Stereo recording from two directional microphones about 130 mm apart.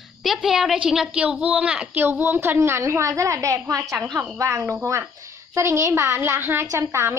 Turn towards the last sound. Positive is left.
turn(degrees=-20)  # may be behind; listen again after turning